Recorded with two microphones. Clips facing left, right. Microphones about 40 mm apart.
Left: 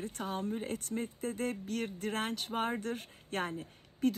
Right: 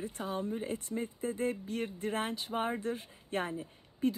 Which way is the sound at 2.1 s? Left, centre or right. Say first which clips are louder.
Even; left.